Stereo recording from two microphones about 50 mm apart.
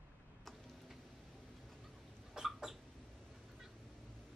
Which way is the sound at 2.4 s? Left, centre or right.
Centre.